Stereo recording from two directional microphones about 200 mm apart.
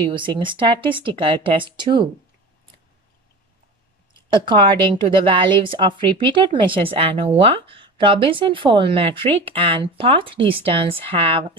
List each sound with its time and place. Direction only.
0.0 s speech: 25° right (ahead or behind)
4.3 s speech: 25° right (ahead or behind)